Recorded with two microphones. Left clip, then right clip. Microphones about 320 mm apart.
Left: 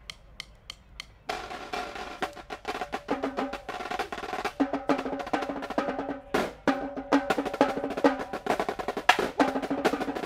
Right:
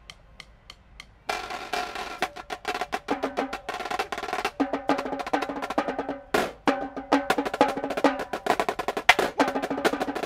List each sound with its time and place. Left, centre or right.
1.2 s music: right
7.2 s percussion: centre
9.4 s music: centre